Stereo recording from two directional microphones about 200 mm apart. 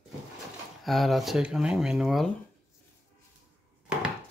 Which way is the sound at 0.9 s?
Centre (ahead or behind).